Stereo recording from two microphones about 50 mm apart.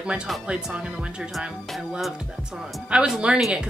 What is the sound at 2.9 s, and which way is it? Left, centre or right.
Speech, centre.